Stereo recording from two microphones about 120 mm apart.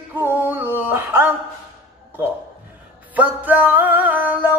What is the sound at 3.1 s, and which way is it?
Music, 15° right (ahead or behind).